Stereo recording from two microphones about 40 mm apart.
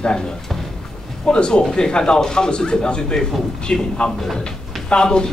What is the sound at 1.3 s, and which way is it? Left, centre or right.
A man's voice, left.